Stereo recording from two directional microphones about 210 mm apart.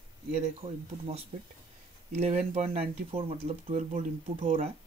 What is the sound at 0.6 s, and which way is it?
Speech, 30° right (ahead or behind).